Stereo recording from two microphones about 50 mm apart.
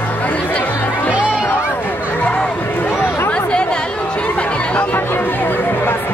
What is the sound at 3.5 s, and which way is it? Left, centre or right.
Chatter, centre.